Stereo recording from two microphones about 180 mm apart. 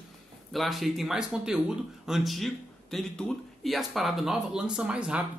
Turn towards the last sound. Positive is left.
turn(degrees=-5)  # may be behind; listen again after turning